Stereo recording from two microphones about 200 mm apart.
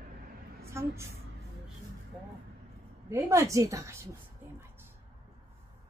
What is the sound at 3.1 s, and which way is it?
A woman's voice, 15° right (ahead or behind).